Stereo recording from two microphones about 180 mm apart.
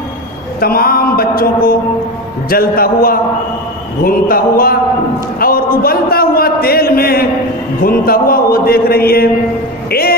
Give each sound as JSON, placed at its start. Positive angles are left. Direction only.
{"t": 0.6, "sound": "speech", "side_deg": 55}
{"t": 4.0, "sound": "a sound", "side_deg": 55}
{"t": 5.4, "sound": "a man's voice", "side_deg": 55}
{"t": 9.8, "sound": "music", "side_deg": 60}